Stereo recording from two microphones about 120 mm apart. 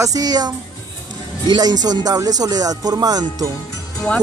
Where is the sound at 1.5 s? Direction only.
35° right (ahead or behind).